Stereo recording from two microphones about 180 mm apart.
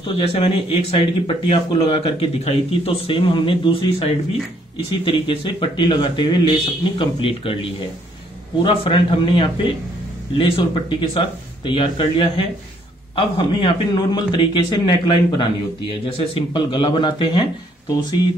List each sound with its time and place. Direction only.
0.0 s speech: 30° left (ahead or behind)
5.0 s speech: 30° left (ahead or behind)